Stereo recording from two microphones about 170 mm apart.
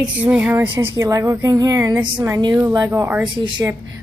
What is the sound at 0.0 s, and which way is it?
Speech, 5° right (ahead or behind).